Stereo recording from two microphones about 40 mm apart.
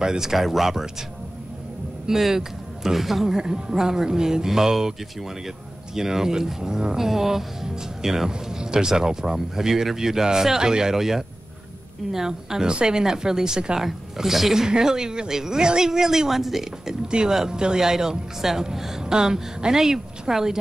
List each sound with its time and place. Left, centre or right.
0.0 s speech: centre
2.0 s speech: centre
3.3 s speech: centre
5.9 s speech: centre
17.1 s speech: centre